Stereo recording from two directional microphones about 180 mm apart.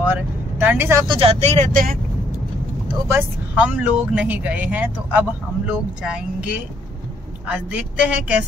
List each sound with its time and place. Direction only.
0.1 s vehicle: 10° right (ahead or behind)
1.0 s speech: 30° right (ahead or behind); by 2.0 s 50° right (ahead or behind)
3.1 s speech: 10° right (ahead or behind)
7.4 s speech: 5° right (ahead or behind)